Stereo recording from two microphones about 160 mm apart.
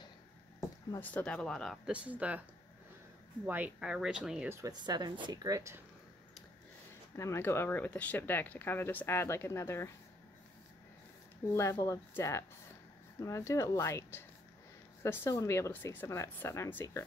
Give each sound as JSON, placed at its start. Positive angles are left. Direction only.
{"t": 1.0, "sound": "speech", "side_deg": 10}
{"t": 3.4, "sound": "speech", "side_deg": -10}
{"t": 4.5, "sound": "speech", "side_deg": -20}
{"t": 7.2, "sound": "speech", "side_deg": 15}
{"t": 11.4, "sound": "speech", "side_deg": 15}